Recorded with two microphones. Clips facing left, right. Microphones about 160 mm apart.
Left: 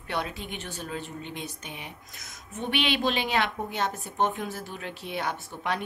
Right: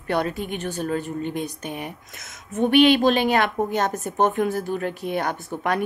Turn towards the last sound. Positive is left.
turn(degrees=-50)  # may be behind; listen again after turning